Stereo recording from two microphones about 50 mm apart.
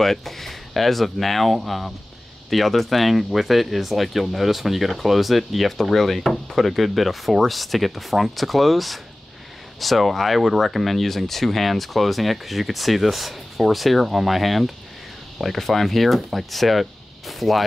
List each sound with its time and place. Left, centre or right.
0.0 s speech: centre